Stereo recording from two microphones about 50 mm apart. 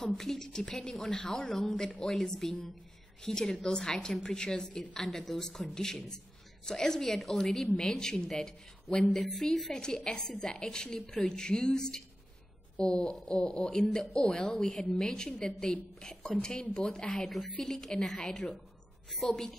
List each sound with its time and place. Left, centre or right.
0.0 s a woman's voice: centre
5.0 s a woman's voice: centre